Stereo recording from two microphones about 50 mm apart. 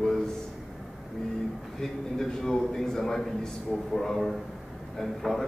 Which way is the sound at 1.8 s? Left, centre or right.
Centre.